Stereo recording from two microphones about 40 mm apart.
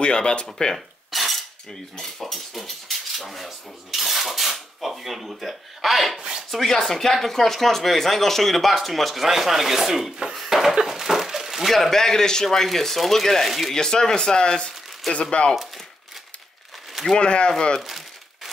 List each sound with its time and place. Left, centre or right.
0.0 s speech: left
0.7 s a sound: centre
1.7 s speech: centre
6.1 s speech: centre
6.5 s speech: centre
11.7 s a man's voice: centre
12.4 s speech: centre
13.7 s speech: centre
17.2 s speech: left
17.5 s a man's voice: centre
17.8 s crumpling: centre